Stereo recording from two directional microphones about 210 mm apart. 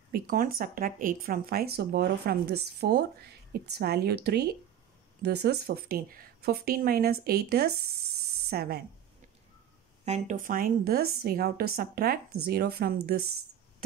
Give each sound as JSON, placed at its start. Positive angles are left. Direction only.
{"t": 0.1, "sound": "speech", "side_deg": -45}
{"t": 10.0, "sound": "speech", "side_deg": -35}